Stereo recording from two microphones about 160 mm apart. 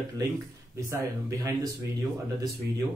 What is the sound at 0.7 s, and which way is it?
Speech, 20° right (ahead or behind).